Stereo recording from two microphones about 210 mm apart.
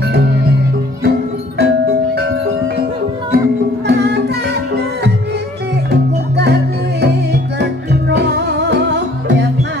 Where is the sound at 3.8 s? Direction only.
55° right (ahead or behind).